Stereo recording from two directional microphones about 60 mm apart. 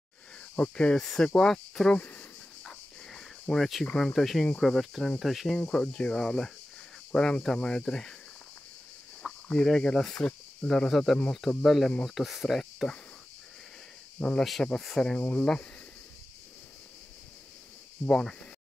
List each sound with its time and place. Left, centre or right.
0.6 s speech: centre
0.9 s speech: centre
2.0 s speech: left
2.6 s cricket: centre
3.8 s speech: centre
4.1 s cricket: centre
5.6 s speech: centre
9.2 s speech: centre
11.4 s cricket: centre
12.2 s speech: centre
14.4 s cricket: centre
15.1 s speech: left
18.0 s speech: centre